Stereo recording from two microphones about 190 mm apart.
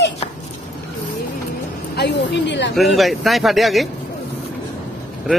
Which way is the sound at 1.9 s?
60° left (ahead or behind).